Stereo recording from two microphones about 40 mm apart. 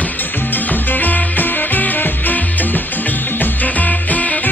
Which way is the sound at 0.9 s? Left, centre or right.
Left.